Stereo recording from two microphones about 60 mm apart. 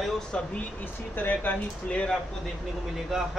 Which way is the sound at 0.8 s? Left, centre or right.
Left.